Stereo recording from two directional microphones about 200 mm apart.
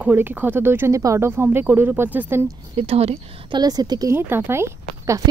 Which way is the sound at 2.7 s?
30° right (ahead or behind).